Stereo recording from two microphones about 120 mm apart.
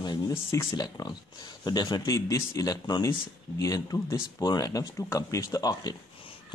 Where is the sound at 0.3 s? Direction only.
25° left (ahead or behind).